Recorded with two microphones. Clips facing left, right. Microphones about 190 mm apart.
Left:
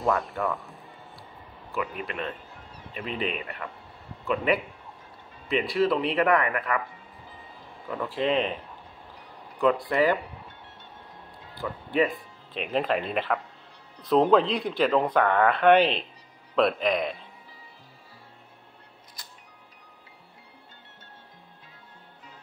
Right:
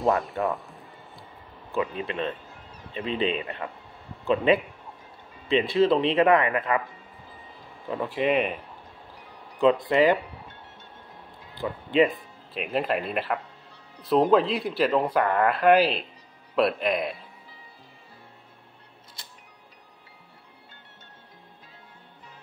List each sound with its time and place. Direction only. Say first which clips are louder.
0.5 s speech: right 2 dB; centre (ahead or behind)
1.7 s speech: right 4 dB; 25° right (ahead or behind)
7.9 s speech: right 2 dB; 20° right (ahead or behind)
9.6 s speech: right 3 dB; 20° right (ahead or behind)
11.5 s speech: right 4 dB; 20° right (ahead or behind)
12.5 s speech: even; 5° right (ahead or behind)
19.2 s music: even; 25° right (ahead or behind)